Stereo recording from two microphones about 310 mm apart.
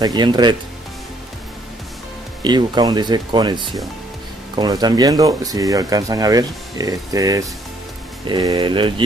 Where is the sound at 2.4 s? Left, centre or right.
Centre.